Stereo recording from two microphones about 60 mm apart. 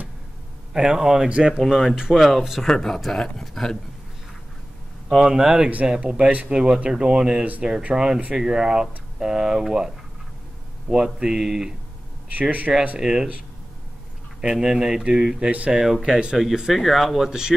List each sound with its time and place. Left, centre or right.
0.7 s speech: centre
5.1 s speech: centre
12.3 s speech: right
13.0 s speech: centre
14.4 s speech: centre